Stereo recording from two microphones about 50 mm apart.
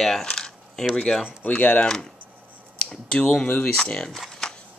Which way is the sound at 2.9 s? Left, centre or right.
Centre.